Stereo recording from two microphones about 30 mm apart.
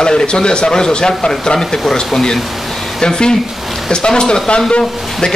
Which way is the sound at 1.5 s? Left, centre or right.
Centre.